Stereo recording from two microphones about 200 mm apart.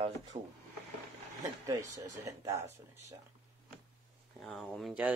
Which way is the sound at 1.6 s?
15° right (ahead or behind).